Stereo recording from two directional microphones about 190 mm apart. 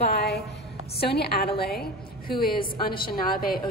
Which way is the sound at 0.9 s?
55° left (ahead or behind).